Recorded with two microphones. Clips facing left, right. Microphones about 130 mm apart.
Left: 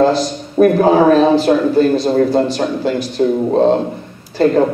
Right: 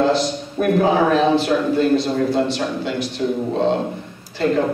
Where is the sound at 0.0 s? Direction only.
45° left (ahead or behind).